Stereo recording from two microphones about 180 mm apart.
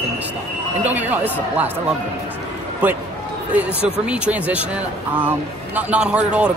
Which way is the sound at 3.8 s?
5° right (ahead or behind).